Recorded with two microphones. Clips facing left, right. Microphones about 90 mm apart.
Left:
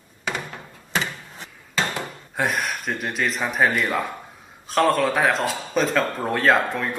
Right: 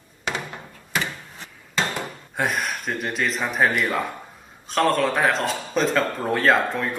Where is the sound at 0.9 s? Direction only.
15° left (ahead or behind).